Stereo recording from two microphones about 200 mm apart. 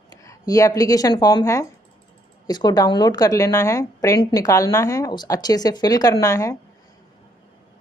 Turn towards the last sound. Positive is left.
turn(degrees=15)  # may be behind; listen again after turning